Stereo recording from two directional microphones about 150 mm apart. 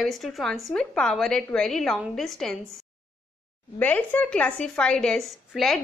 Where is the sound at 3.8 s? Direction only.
10° left (ahead or behind).